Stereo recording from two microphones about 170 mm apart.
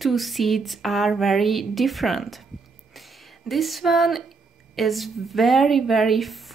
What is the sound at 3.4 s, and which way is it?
Speech, centre (ahead or behind).